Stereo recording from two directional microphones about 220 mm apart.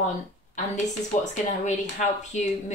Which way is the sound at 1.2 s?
35° left (ahead or behind).